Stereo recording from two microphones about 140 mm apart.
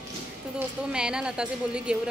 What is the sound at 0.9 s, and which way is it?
Speech, 5° right (ahead or behind).